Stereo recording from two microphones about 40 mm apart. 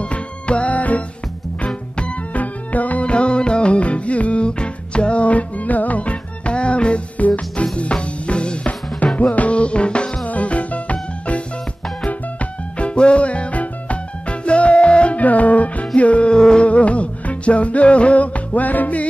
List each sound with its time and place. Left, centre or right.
0.0 s music: left
1.7 s music: left
2.3 s music: left
3.1 s music: left
7.2 s music: left
10.2 s music: left
15.1 s music: left
16.6 s music: left